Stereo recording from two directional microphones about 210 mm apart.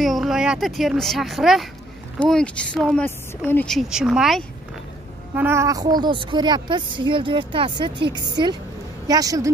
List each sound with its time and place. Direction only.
0.0 s a woman's voice: centre (ahead or behind)